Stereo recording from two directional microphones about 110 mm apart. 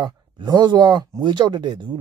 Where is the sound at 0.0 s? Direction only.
40° right (ahead or behind).